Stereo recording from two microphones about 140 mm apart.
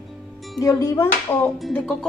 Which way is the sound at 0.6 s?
25° left (ahead or behind).